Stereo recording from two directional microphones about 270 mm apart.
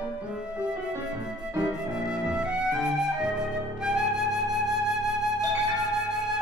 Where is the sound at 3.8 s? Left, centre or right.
Centre.